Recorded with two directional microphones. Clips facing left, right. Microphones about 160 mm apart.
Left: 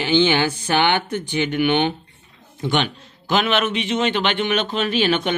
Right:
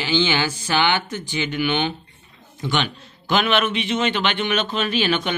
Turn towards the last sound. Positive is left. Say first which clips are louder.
# left 2 dB
turn(degrees=40)  # may be behind; listen again after turning